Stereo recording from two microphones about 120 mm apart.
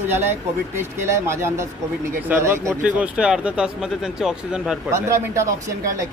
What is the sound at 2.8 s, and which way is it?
Speech, 10° right (ahead or behind).